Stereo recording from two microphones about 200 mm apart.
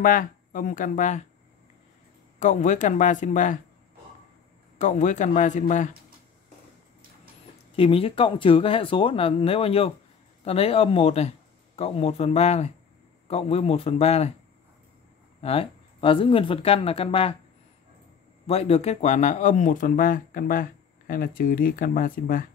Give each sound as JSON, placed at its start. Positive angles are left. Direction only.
{"t": 0.0, "sound": "speech", "side_deg": 40}
{"t": 2.3, "sound": "speech", "side_deg": 40}
{"t": 4.7, "sound": "speech", "side_deg": 40}
{"t": 7.7, "sound": "speech", "side_deg": 25}
{"t": 15.4, "sound": "speech", "side_deg": 30}
{"t": 18.5, "sound": "speech", "side_deg": 30}